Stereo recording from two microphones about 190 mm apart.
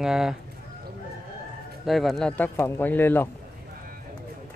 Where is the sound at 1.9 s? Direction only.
Centre (ahead or behind).